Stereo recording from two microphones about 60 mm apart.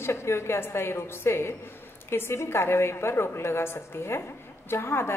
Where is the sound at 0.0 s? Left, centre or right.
Left.